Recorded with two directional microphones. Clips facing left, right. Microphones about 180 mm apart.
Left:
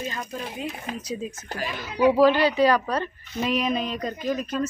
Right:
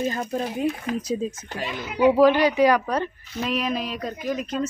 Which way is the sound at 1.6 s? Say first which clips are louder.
Right 1 dB; 20° right (ahead or behind).